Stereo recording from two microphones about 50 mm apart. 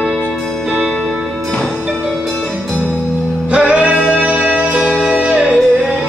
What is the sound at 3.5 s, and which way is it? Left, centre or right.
Music, right.